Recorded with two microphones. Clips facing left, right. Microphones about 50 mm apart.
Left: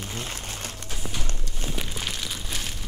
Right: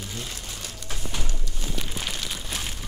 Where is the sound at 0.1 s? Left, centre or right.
Left.